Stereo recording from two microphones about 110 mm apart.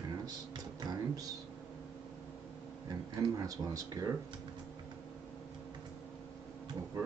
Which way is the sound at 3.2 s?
35° right (ahead or behind).